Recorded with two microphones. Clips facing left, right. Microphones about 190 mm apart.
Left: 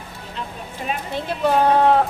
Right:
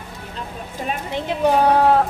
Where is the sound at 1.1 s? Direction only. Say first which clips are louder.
Right 2 dB; 15° right (ahead or behind).